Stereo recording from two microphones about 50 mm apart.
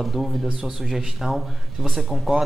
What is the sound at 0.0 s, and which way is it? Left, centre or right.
A man's voice, centre.